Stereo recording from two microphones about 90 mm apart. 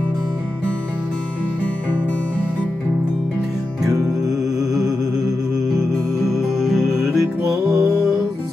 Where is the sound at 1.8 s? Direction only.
15° left (ahead or behind).